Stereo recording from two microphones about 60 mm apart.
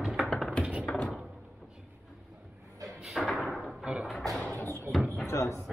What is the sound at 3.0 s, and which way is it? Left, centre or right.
Slam, centre.